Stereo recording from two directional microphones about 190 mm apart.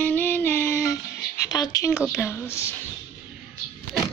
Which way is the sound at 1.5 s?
20° left (ahead or behind).